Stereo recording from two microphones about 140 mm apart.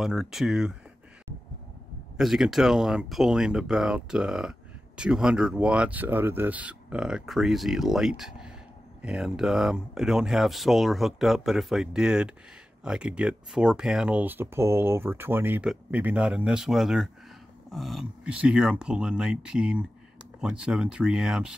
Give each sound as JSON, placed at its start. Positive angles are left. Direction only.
{"t": 0.0, "sound": "speech", "side_deg": 0}
{"t": 2.1, "sound": "speech", "side_deg": 0}